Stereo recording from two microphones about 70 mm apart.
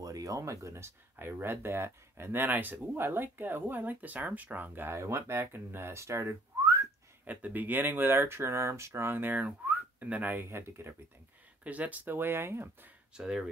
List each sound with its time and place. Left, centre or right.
0.0 s speech: right
4.9 s speech: right
7.2 s speech: right
11.6 s speech: right
13.1 s speech: centre